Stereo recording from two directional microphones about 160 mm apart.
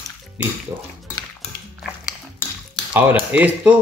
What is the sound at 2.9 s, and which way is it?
Speech, 10° right (ahead or behind).